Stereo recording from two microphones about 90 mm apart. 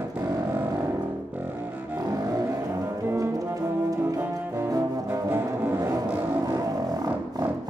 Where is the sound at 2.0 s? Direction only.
40° right (ahead or behind).